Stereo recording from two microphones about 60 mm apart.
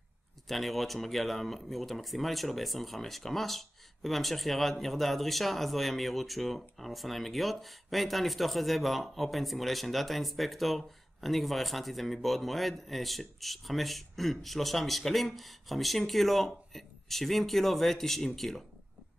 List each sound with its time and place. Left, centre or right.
0.5 s speech: centre